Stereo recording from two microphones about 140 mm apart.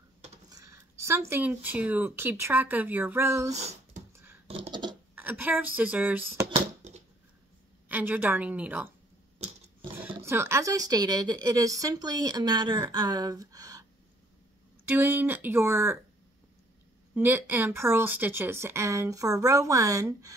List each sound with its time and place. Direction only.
0.5 s speech: 25° right (ahead or behind)
3.5 s a sound: 55° right (ahead or behind)
4.1 s computer keyboard: 15° right (ahead or behind)
4.5 s a sound: 35° right (ahead or behind)
5.1 s speech: 15° right (ahead or behind)
7.9 s speech: 10° right (ahead or behind)
10.2 s speech: 20° right (ahead or behind)
14.9 s speech: 15° right (ahead or behind)
17.1 s speech: 15° right (ahead or behind)